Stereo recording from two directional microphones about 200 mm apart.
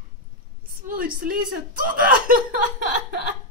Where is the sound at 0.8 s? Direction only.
45° right (ahead or behind).